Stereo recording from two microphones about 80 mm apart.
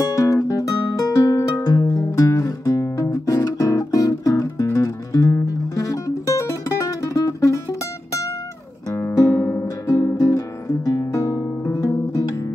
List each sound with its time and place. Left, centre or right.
0.1 s music: left
3.5 s guitar: left
4.7 s music: left
9.1 s music: left